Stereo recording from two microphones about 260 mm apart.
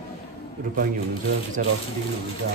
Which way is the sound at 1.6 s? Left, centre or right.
Right.